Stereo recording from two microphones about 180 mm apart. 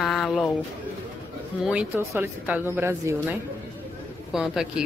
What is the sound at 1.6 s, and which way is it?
A woman's voice, 5° right (ahead or behind).